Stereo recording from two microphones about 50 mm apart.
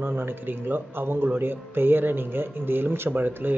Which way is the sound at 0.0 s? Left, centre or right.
Right.